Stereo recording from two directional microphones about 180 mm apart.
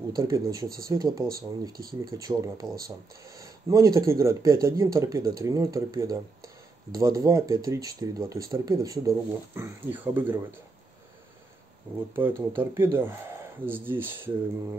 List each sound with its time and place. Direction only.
0.1 s speech: 20° right (ahead or behind)
1.7 s speech: 55° right (ahead or behind)
2.1 s speech: 20° right (ahead or behind)
12.2 s speech: 10° right (ahead or behind)